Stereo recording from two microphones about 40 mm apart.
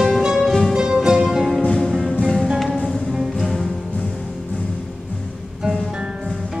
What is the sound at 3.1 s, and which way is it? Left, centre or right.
Music, centre.